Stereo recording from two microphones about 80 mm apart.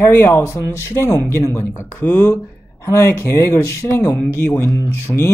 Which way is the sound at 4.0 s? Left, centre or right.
Centre.